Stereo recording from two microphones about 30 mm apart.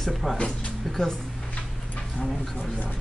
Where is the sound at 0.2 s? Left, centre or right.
Centre.